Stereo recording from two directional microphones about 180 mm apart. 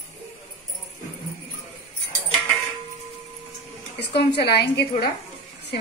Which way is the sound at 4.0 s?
70° left (ahead or behind).